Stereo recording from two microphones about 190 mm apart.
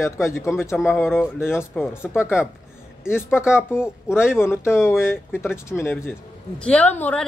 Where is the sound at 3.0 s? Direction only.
10° left (ahead or behind).